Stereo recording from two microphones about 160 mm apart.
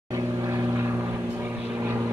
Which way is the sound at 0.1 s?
20° right (ahead or behind).